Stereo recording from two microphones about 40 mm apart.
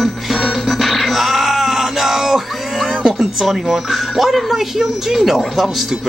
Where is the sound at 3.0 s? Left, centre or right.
Right.